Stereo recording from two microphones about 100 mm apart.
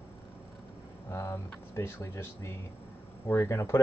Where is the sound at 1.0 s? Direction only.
30° left (ahead or behind).